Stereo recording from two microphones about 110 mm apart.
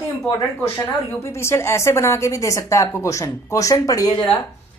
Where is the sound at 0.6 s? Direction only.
25° left (ahead or behind).